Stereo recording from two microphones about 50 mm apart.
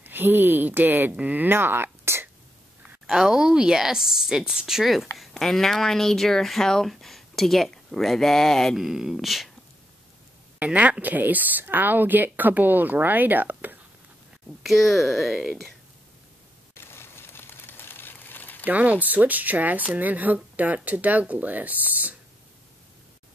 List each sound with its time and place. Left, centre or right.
0.0 s speech: right
1.5 s speech: right
3.1 s a woman's voice: centre
8.7 s a woman's voice: centre
10.6 s speech: right
14.6 s speech: centre
16.7 s a sound: left
18.6 s speech: right